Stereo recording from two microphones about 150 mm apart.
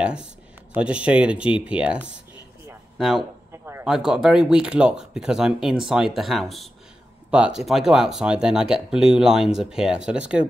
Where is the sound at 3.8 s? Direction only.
5° right (ahead or behind).